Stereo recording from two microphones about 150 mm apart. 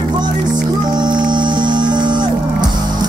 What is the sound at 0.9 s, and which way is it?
Music, 30° right (ahead or behind).